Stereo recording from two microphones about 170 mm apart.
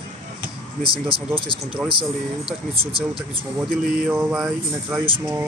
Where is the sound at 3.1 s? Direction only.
5° right (ahead or behind).